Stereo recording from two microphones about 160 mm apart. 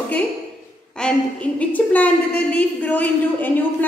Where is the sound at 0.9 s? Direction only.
5° left (ahead or behind).